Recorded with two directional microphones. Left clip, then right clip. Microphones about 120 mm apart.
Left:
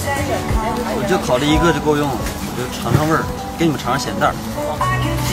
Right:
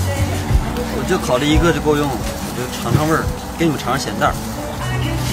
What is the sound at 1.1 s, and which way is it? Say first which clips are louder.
Speech: even; centre (ahead or behind).